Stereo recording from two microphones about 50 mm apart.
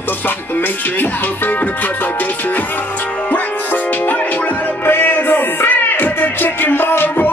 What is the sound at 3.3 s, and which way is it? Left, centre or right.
Music, left.